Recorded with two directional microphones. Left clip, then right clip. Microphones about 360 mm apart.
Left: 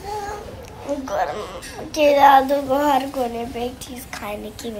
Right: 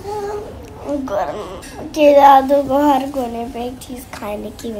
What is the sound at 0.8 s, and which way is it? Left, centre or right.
A woman's voice, centre.